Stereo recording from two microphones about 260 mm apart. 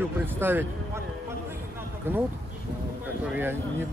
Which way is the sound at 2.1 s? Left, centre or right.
Centre.